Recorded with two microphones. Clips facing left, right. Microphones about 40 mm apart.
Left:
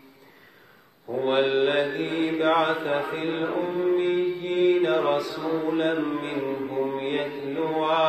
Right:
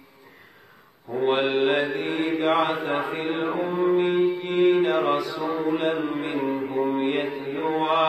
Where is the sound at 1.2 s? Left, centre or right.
Centre.